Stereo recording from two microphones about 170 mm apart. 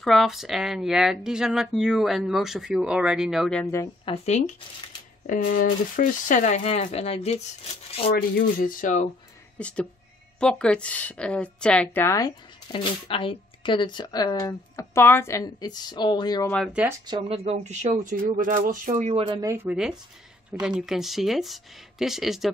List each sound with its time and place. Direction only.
0.0 s speech: centre (ahead or behind)
4.0 s speech: 40° left (ahead or behind)
5.2 s speech: 55° left (ahead or behind); by 8.1 s 35° left (ahead or behind)
8.1 s speech: 55° left (ahead or behind)
9.6 s a woman's voice: 5° left (ahead or behind)
12.7 s speech: 30° left (ahead or behind)
16.6 s speech: 5° right (ahead or behind)
17.0 s speech: 25° right (ahead or behind)
17.5 s speech: 45° right (ahead or behind)
19.1 s speech: 30° right (ahead or behind)
19.4 s speech: 15° right (ahead or behind)